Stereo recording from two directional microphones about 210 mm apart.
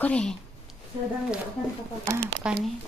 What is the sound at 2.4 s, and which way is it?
Speech, 5° right (ahead or behind).